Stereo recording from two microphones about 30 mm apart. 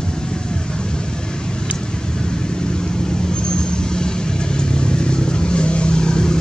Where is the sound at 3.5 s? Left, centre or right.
Left.